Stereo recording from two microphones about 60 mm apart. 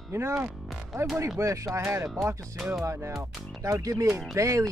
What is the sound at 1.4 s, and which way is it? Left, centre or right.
Speech, right.